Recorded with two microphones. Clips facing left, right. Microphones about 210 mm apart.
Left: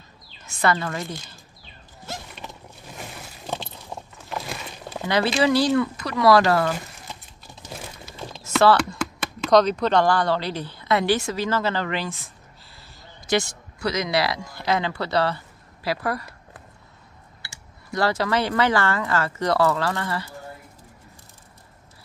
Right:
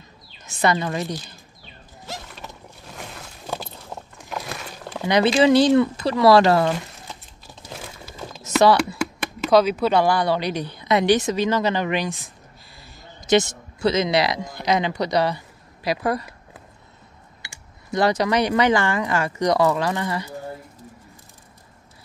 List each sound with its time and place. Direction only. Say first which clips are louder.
0.5 s speech: right 2 dB; 20° right (ahead or behind)
3.9 s biting: even; 10° left (ahead or behind)
5.0 s speech: right 4 dB; 20° right (ahead or behind)
7.7 s typing: right 1 dB; 5° right (ahead or behind)
8.4 s speech: right 1 dB; 20° right (ahead or behind)
13.3 s speech: right 5 dB; 25° right (ahead or behind)
17.9 s speech: right 3 dB; 20° right (ahead or behind)